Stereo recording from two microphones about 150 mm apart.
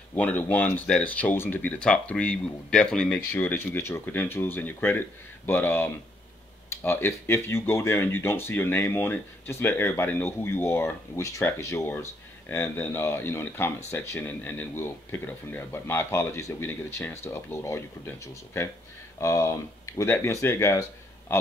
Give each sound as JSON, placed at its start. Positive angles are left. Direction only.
{"t": 0.1, "sound": "speech", "side_deg": 10}